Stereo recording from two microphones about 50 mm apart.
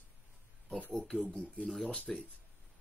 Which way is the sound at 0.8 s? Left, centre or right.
Left.